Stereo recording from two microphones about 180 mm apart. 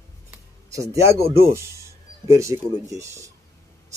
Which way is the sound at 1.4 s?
15° right (ahead or behind).